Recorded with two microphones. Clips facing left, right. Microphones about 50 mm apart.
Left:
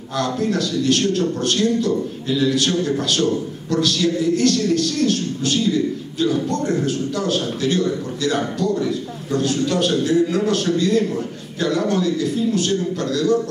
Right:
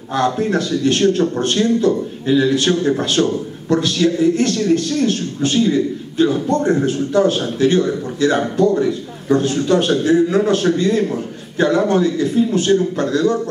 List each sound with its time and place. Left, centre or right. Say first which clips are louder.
0.2 s speech: right 3 dB; right